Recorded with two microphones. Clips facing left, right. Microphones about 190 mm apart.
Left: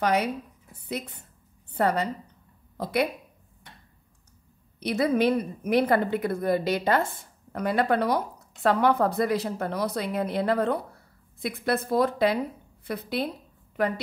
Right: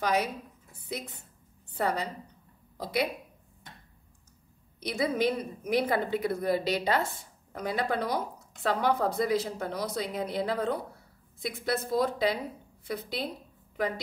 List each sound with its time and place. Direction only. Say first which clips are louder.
0.0 s a woman's voice: left 4 dB; 60° left (ahead or behind)
4.8 s a woman's voice: left 5 dB; 65° left (ahead or behind)